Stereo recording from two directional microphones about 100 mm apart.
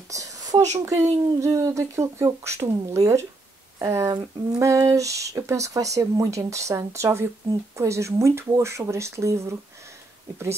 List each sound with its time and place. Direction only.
0.1 s speech: 35° right (ahead or behind)